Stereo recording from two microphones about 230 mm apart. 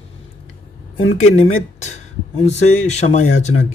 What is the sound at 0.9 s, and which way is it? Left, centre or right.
Speech, left.